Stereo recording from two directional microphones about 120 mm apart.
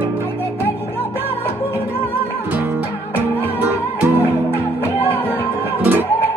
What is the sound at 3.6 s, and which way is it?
Music, 15° right (ahead or behind).